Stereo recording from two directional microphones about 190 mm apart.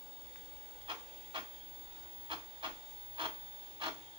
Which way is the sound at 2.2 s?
25° right (ahead or behind).